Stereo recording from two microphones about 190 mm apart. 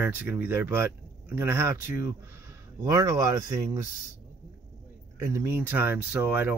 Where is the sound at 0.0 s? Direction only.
10° right (ahead or behind).